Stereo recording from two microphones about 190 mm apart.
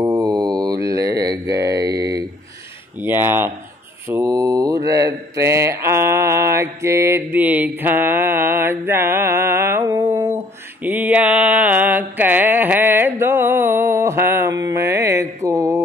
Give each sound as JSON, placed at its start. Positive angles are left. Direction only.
{"t": 0.0, "sound": "mantra", "side_deg": -20}
{"t": 1.3, "sound": "a sound", "side_deg": -15}
{"t": 3.0, "sound": "speech", "side_deg": -10}
{"t": 4.1, "sound": "mantra", "side_deg": -20}